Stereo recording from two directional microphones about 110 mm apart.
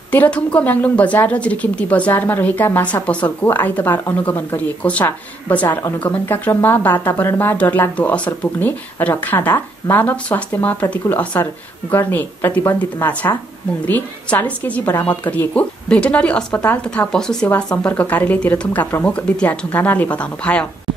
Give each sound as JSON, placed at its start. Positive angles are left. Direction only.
{"t": 0.1, "sound": "a woman's voice", "side_deg": 15}